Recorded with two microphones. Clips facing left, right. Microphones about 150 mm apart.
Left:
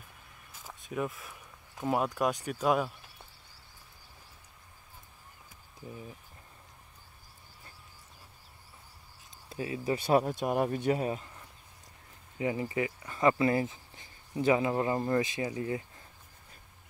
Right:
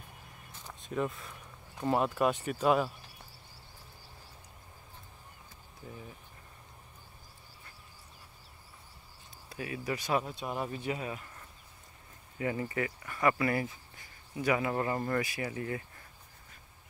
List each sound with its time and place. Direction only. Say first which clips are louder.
0.5 s a sound: even; 5° left (ahead or behind)
1.8 s speech: right 1 dB; centre (ahead or behind)
9.5 s speech: left 4 dB; 25° left (ahead or behind)
10.1 s speech: left 7 dB; 50° left (ahead or behind)
12.4 s speech: left 2 dB; 20° left (ahead or behind)